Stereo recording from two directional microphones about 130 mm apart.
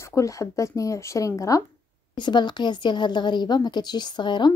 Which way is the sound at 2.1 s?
35° left (ahead or behind).